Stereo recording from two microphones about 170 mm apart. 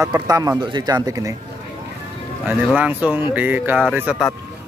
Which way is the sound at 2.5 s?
10° right (ahead or behind).